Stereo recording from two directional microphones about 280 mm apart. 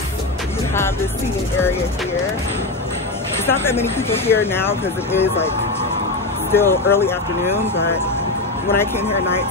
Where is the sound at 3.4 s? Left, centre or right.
Centre.